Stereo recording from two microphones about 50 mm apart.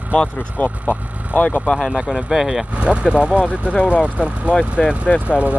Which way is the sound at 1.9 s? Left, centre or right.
Centre.